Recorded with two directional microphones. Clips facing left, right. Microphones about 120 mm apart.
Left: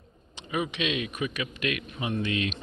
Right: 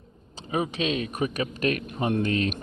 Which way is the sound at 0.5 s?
35° right (ahead or behind).